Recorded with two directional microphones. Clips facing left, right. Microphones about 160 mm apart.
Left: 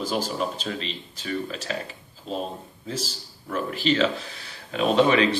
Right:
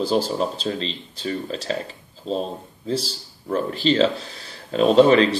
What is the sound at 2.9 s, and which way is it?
Speech, 30° right (ahead or behind).